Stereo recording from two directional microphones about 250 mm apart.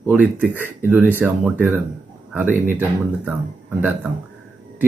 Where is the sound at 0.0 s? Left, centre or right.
Centre.